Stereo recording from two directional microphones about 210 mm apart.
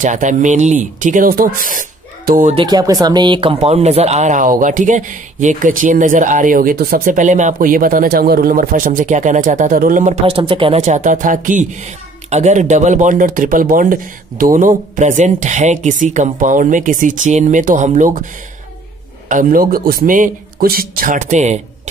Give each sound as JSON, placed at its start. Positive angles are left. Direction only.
{"t": 0.0, "sound": "speech", "side_deg": -35}
{"t": 2.5, "sound": "speech", "side_deg": -20}
{"t": 19.2, "sound": "speech", "side_deg": -40}